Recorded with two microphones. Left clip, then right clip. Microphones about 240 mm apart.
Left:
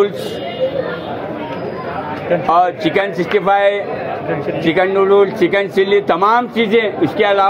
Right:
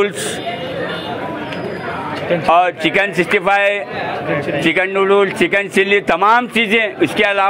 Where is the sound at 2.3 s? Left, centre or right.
Right.